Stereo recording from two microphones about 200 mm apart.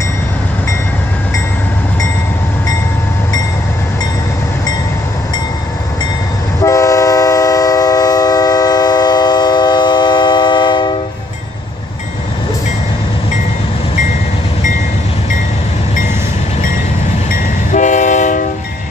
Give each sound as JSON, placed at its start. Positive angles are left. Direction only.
{"t": 6.6, "sound": "train", "side_deg": 15}
{"t": 17.3, "sound": "train", "side_deg": 40}